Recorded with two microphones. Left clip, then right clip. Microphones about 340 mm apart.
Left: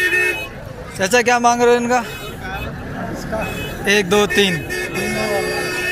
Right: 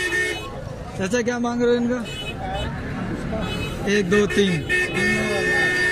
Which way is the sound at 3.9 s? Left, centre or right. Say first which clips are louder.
Left 5 dB; centre.